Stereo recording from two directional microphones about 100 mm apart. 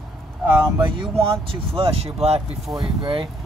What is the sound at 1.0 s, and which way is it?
Speech, 65° right (ahead or behind).